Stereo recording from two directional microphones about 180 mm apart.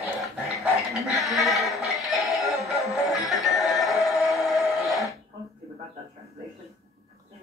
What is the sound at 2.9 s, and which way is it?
Music, centre (ahead or behind).